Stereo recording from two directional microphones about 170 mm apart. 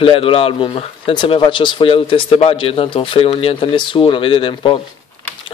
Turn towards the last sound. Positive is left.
turn(degrees=30)  # may be behind; listen again after turning